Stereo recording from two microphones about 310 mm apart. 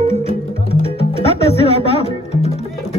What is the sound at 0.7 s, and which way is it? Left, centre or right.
Music, centre.